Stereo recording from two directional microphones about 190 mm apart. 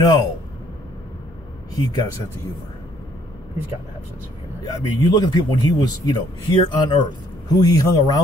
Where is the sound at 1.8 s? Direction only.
20° left (ahead or behind).